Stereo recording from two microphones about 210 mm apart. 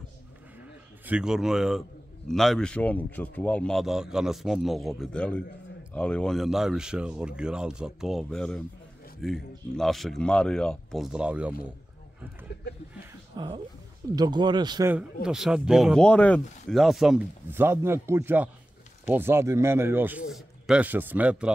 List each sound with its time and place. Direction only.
1.0 s speech: 5° right (ahead or behind)
13.4 s speech: 20° right (ahead or behind)
15.2 s a man's voice: 5° right (ahead or behind)